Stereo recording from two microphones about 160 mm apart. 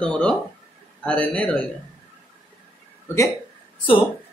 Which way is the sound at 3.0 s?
20° left (ahead or behind).